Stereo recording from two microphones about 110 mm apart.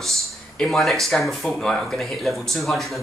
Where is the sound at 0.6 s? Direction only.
Centre (ahead or behind).